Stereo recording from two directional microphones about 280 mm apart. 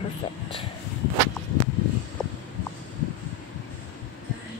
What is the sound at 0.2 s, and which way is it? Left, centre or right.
Speech, centre.